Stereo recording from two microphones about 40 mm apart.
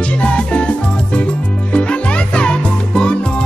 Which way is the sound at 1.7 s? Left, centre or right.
Left.